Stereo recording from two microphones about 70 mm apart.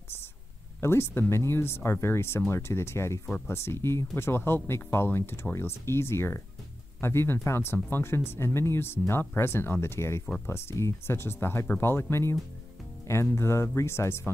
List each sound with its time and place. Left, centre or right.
0.7 s speech: left